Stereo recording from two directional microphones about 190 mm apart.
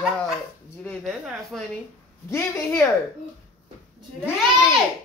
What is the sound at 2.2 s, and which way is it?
Speech, 15° left (ahead or behind).